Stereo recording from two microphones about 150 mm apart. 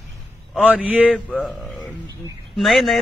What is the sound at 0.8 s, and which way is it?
Speech, 10° right (ahead or behind).